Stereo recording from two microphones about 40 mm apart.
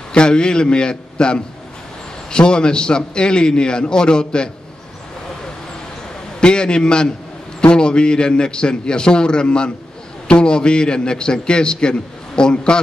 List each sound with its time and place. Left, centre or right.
0.1 s a man's voice: left
6.4 s a man's voice: left